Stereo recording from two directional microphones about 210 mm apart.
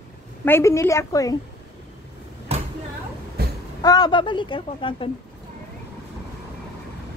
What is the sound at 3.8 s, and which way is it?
A woman's voice, 20° left (ahead or behind).